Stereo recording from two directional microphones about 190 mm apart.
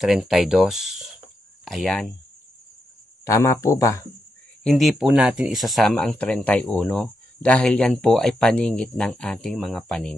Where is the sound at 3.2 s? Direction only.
15° left (ahead or behind).